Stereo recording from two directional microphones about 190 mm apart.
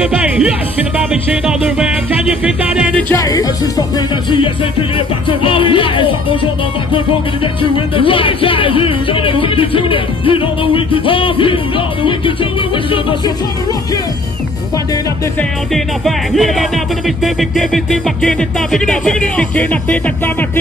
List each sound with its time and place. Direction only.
0.0 s music: 5° right (ahead or behind)
3.0 s music: 15° left (ahead or behind)
4.9 s music: 25° left (ahead or behind)
7.7 s music: 25° left (ahead or behind)
16.3 s music: centre (ahead or behind)